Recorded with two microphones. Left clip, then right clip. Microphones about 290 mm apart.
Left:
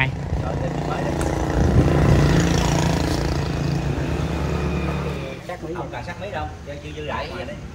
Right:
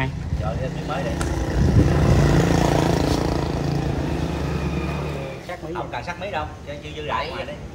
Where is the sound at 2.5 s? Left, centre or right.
Right.